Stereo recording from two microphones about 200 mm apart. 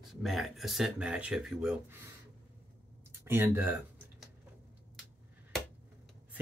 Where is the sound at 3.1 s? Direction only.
10° right (ahead or behind).